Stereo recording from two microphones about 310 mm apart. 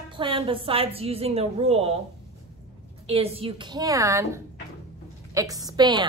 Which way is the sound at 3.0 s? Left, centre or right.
Centre.